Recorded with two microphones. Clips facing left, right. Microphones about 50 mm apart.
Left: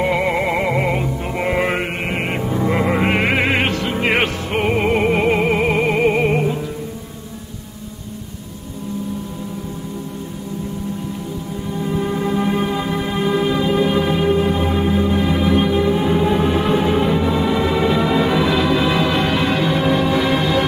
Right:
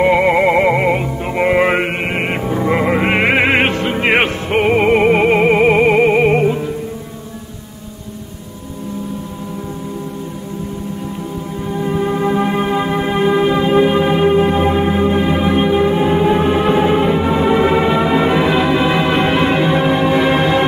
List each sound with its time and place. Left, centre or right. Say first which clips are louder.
0.0 s music: right 6 dB; centre
11.7 s music: right 4 dB; right